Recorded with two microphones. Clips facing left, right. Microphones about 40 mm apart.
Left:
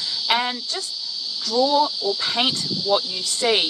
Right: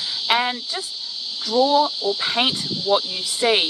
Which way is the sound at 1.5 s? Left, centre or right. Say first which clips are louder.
Right 2 dB; right.